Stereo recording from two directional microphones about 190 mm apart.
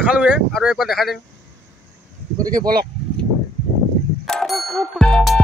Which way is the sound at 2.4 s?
20° right (ahead or behind).